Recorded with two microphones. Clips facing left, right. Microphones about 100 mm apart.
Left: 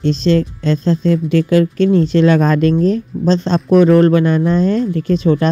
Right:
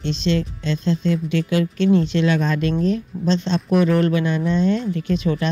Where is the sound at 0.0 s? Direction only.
40° left (ahead or behind).